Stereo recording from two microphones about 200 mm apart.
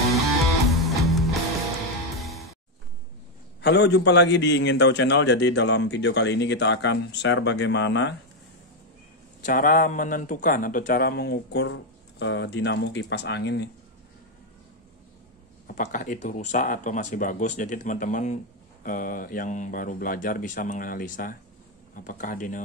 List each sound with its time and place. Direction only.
0.7 s music: centre (ahead or behind)
3.6 s a man's voice: 60° left (ahead or behind)
9.4 s speech: 45° left (ahead or behind)
11.6 s a man's voice: 70° left (ahead or behind)
15.6 s speech: 40° left (ahead or behind)